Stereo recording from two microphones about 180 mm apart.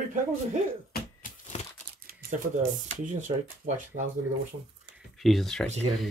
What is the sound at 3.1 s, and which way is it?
Speech, 45° right (ahead or behind).